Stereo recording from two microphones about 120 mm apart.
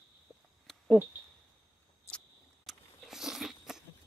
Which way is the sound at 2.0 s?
10° left (ahead or behind).